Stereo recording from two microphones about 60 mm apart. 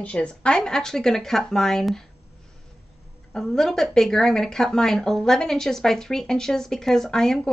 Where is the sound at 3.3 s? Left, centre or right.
Centre.